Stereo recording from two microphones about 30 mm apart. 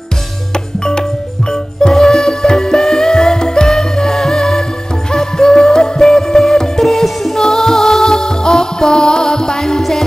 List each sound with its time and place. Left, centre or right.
0.7 s music: left